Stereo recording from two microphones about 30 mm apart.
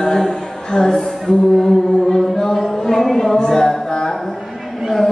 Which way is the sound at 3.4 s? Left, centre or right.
Left.